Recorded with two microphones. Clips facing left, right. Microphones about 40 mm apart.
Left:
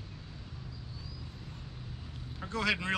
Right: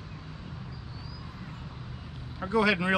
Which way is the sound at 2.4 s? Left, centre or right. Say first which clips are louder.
Right 7 dB; centre.